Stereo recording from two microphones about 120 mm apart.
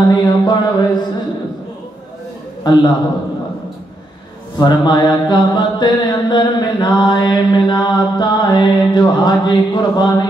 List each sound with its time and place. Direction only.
0.1 s mantra: 35° left (ahead or behind)
2.6 s mantra: 35° left (ahead or behind)
4.6 s mantra: 35° left (ahead or behind)